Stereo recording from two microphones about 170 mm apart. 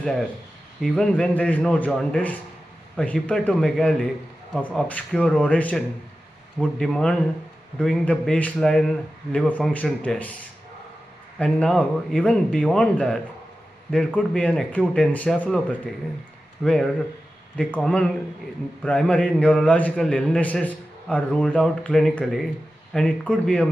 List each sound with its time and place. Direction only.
0.0 s a man's voice: centre (ahead or behind)
11.3 s a man's voice: 5° left (ahead or behind)
16.6 s a man's voice: 5° left (ahead or behind)